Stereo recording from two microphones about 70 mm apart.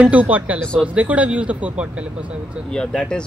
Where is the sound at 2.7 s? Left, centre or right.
Centre.